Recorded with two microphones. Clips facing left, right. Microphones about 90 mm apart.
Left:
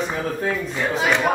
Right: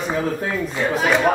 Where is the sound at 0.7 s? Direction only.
Centre (ahead or behind).